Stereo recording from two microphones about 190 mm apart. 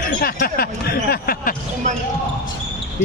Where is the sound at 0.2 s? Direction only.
55° left (ahead or behind).